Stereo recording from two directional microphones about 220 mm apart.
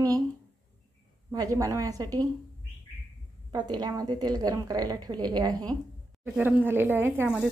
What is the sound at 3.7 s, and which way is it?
A woman's voice, 20° right (ahead or behind).